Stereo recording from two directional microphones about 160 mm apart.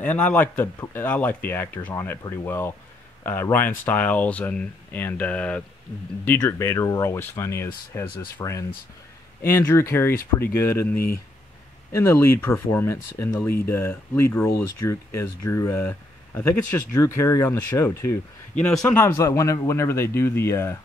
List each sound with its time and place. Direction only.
0.0 s speech: 10° left (ahead or behind)
12.0 s speech: 15° left (ahead or behind)